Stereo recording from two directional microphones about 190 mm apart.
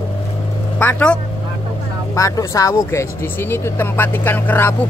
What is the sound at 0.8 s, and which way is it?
Speech, 10° left (ahead or behind).